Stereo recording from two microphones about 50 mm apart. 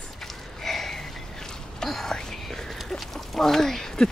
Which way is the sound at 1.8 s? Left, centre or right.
Centre.